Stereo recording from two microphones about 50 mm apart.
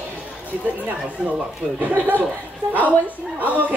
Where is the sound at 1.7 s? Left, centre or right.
Right.